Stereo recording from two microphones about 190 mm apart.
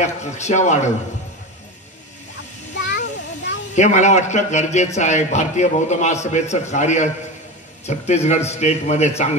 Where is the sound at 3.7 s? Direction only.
40° left (ahead or behind).